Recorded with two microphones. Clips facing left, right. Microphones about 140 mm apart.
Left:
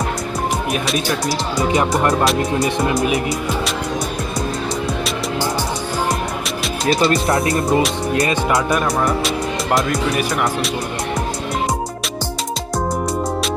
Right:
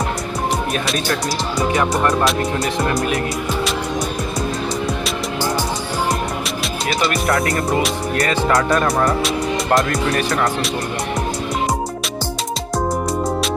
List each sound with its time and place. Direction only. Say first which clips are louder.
2.9 s music: left 2 dB; centre (ahead or behind)
6.9 s music: left 3 dB; 25° left (ahead or behind)
8.8 s music: right 1 dB; centre (ahead or behind)